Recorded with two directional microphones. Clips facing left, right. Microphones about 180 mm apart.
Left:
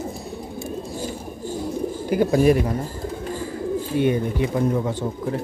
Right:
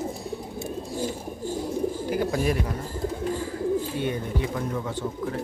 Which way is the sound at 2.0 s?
15° left (ahead or behind).